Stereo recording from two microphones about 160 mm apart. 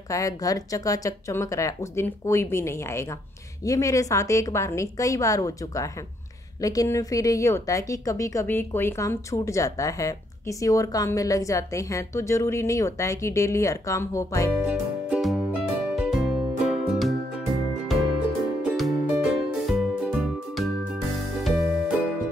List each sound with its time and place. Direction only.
0.1 s a woman's voice: 20° left (ahead or behind)
14.7 s music: 5° right (ahead or behind)
18.6 s music: 5° right (ahead or behind)